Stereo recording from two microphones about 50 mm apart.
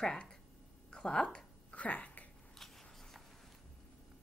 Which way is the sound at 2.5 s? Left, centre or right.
Centre.